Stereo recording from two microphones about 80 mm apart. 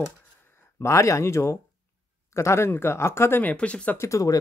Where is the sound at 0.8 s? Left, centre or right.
Left.